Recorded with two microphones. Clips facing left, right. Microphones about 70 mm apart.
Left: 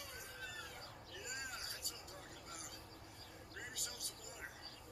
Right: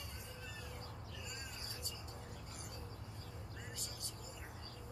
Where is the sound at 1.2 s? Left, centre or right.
Left.